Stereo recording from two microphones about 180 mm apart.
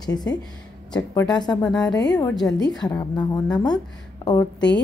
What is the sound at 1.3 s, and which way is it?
A woman's voice, 20° left (ahead or behind).